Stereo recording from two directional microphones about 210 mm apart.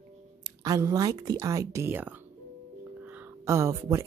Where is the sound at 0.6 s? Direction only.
15° right (ahead or behind).